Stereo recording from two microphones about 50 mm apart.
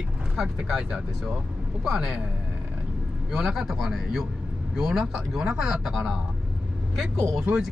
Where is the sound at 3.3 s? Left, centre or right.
Centre.